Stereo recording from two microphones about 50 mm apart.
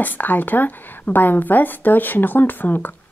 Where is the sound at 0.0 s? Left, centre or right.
Left.